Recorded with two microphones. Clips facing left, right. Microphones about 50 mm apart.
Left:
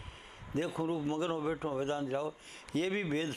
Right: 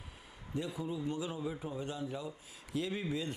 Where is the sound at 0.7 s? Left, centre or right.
Left.